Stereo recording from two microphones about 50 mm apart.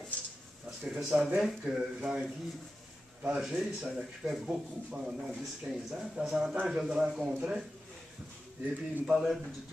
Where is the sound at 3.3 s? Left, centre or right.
Centre.